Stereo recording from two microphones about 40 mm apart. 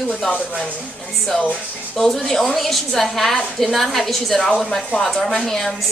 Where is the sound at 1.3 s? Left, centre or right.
Centre.